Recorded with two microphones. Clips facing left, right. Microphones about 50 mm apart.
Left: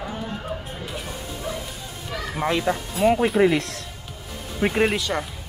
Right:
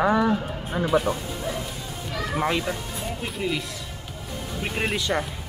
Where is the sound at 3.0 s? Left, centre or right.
Left.